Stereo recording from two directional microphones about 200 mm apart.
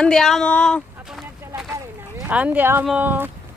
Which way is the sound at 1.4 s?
10° right (ahead or behind).